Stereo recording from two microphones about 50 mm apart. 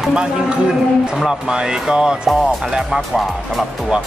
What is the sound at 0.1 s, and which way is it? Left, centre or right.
Speech, centre.